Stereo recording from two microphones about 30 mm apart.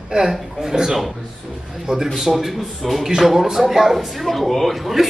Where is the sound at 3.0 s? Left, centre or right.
Centre.